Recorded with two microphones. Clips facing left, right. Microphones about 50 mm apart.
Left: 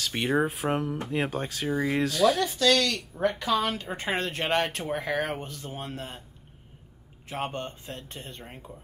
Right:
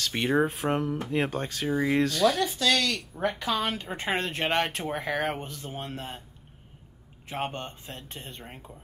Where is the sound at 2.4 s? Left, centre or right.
Centre.